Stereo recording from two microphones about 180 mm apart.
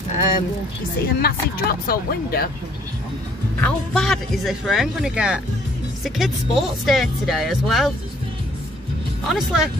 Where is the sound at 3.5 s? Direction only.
5° left (ahead or behind).